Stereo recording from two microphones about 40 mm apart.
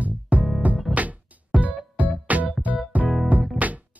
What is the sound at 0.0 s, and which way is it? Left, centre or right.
Music, right.